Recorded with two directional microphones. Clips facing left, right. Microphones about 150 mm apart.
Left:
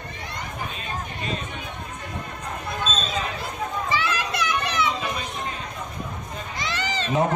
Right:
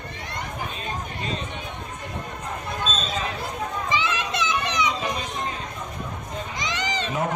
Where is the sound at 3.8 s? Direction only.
20° right (ahead or behind).